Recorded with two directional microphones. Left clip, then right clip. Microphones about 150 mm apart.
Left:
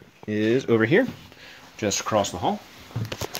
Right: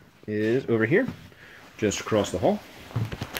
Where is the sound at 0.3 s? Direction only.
35° left (ahead or behind).